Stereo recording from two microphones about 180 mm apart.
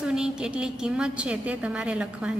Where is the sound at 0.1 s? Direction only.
5° right (ahead or behind).